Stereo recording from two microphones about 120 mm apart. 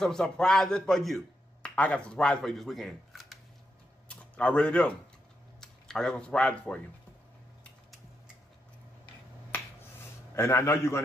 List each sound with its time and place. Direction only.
0.0 s a man's voice: 5° left (ahead or behind)
4.1 s speech: 10° left (ahead or behind)
9.5 s finger snapping: 15° left (ahead or behind)
10.3 s a man's voice: 20° left (ahead or behind)